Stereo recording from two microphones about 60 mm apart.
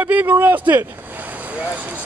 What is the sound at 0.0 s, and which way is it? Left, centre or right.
Speech, right.